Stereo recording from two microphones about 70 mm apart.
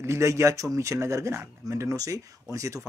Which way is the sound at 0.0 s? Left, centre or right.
Right.